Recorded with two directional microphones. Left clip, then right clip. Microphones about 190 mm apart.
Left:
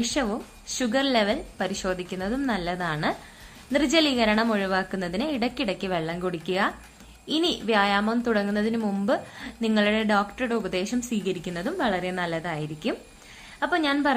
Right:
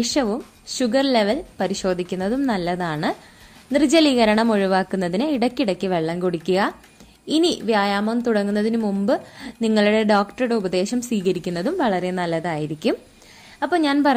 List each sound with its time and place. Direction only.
0.0 s a woman's voice: 45° right (ahead or behind)